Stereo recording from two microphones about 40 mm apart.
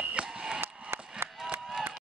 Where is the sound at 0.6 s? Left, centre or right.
Right.